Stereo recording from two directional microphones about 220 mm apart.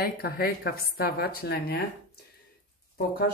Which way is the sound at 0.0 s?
45° left (ahead or behind).